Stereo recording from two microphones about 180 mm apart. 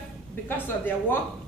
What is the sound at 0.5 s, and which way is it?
Speech, 10° left (ahead or behind).